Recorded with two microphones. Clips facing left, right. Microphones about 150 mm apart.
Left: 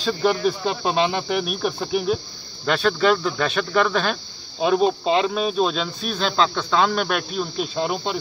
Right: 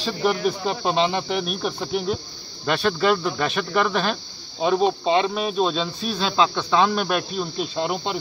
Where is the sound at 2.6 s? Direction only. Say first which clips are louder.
Left 1 dB; 15° right (ahead or behind).